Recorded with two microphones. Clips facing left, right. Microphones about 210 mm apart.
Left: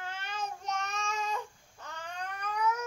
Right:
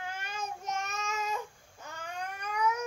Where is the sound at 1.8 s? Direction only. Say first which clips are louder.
Even; 10° right (ahead or behind).